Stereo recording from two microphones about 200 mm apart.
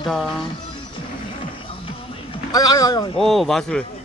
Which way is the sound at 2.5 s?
20° left (ahead or behind).